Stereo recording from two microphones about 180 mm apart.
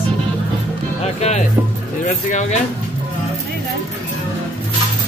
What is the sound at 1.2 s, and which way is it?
Speech, 35° left (ahead or behind).